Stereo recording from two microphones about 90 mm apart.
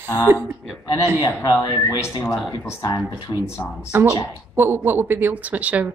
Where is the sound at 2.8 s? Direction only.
50° left (ahead or behind).